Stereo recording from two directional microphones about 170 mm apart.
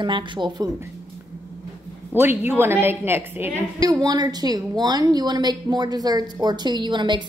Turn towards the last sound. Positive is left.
turn(degrees=-25)  # may be behind; listen again after turning